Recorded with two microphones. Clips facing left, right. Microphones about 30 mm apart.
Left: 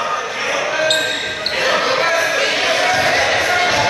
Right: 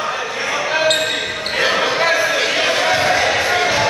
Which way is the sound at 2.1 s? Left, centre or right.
Centre.